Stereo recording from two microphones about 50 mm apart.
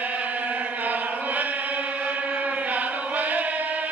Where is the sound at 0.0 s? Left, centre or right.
Right.